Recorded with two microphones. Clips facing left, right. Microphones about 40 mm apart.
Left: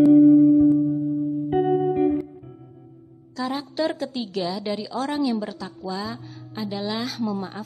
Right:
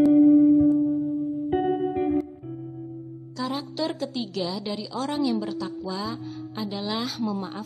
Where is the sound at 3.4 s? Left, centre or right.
Centre.